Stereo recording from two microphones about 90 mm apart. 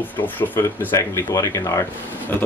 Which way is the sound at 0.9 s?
35° left (ahead or behind).